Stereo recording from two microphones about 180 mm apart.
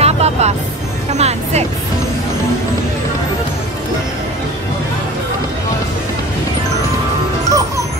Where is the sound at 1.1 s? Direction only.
35° right (ahead or behind).